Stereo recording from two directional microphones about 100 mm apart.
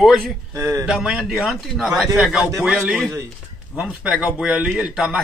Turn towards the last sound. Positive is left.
turn(degrees=-10)  # may be behind; listen again after turning